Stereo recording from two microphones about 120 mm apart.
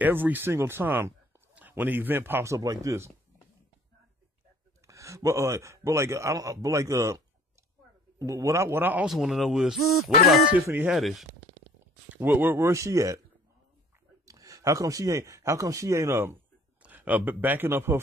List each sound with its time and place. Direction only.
0.0 s speech: 15° right (ahead or behind)
4.8 s a man's voice: 25° right (ahead or behind)
8.2 s a man's voice: 25° right (ahead or behind)
9.0 s speech: 5° right (ahead or behind)
12.1 s a man's voice: 15° right (ahead or behind)
14.2 s speech: 30° right (ahead or behind)